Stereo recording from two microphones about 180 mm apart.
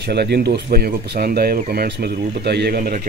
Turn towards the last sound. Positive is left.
turn(degrees=-60)  # may be behind; listen again after turning